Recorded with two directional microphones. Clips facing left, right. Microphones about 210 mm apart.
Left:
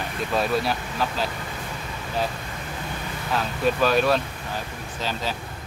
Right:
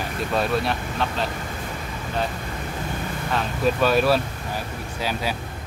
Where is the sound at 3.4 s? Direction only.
Centre (ahead or behind).